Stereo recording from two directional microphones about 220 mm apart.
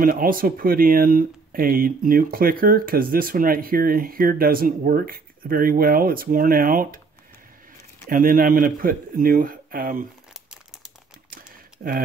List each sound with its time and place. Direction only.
0.0 s speech: 40° right (ahead or behind)
8.1 s speech: 40° right (ahead or behind)